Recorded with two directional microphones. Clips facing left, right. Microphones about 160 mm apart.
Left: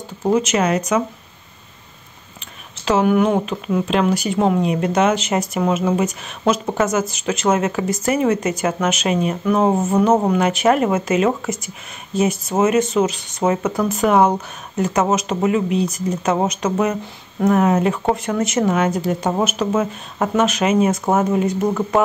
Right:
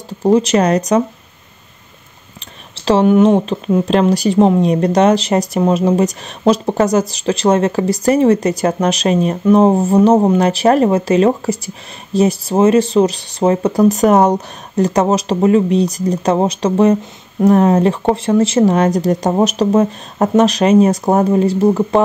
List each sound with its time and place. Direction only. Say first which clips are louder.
0.3 s speech: right 5 dB; 35° right (ahead or behind)
2.7 s speech: right 5 dB; 35° right (ahead or behind)